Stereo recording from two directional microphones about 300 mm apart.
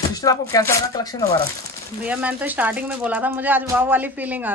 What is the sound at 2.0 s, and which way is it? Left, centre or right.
Speech, centre.